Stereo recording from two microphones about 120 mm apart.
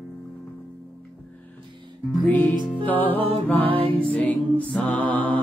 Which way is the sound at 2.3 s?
15° left (ahead or behind).